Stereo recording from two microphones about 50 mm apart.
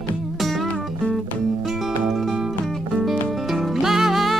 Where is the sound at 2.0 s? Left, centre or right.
Centre.